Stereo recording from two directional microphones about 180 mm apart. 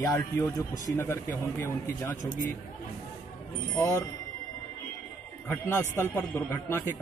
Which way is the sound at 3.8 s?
15° left (ahead or behind).